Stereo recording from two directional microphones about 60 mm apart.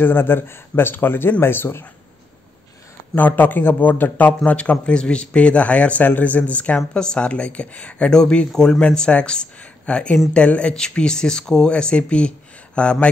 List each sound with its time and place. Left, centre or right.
0.0 s a man's voice: left
3.2 s a man's voice: left
4.5 s a man's voice: left